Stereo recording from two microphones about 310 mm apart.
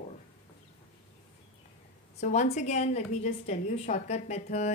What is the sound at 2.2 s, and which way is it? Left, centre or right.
A woman's voice, left.